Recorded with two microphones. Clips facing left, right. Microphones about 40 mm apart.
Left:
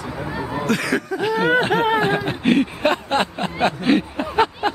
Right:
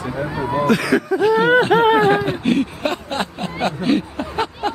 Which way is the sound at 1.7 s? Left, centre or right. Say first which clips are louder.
Right 5 dB; centre.